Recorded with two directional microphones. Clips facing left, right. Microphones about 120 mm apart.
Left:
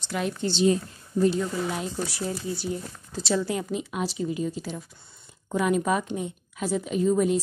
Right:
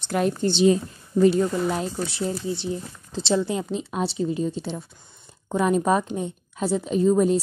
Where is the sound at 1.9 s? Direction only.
25° right (ahead or behind).